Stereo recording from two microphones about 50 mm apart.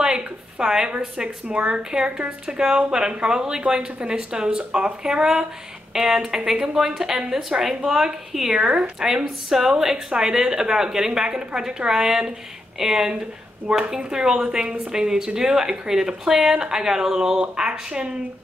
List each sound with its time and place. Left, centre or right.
0.0 s a sound: centre
1.1 s speech: right
2.0 s speech: right
2.4 s speech: centre
8.5 s speech: right
9.5 s speech: centre